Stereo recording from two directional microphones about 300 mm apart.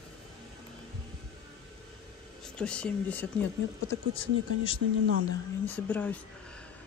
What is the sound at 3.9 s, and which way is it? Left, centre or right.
Speech, centre.